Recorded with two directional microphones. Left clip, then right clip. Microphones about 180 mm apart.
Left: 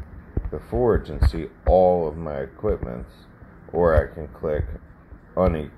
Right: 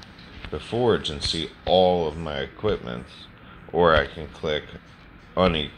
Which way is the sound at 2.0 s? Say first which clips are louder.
Left 1 dB; 10° right (ahead or behind).